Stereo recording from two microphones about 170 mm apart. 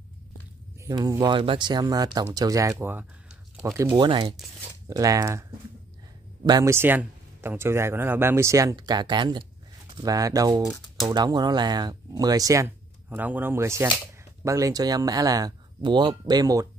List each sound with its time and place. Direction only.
0.8 s speech: 20° right (ahead or behind)
2.7 s a sound: 10° right (ahead or behind)
3.7 s speech: 20° right (ahead or behind)
6.4 s speech: 20° right (ahead or behind)